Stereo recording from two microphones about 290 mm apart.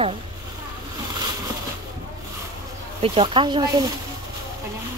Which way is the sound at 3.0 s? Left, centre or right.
Centre.